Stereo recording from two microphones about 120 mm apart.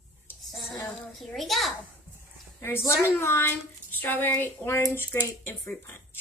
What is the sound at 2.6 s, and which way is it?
Speech, 20° left (ahead or behind).